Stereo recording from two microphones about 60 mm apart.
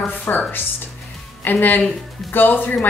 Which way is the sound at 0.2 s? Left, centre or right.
Left.